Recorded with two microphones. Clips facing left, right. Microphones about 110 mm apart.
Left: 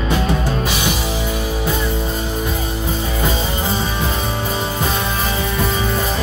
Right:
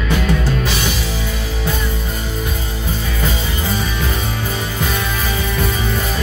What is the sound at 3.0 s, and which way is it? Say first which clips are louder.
Music: left 2 dB; 25° left (ahead or behind).